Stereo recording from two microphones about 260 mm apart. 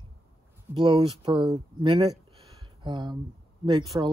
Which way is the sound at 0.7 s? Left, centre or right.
Centre.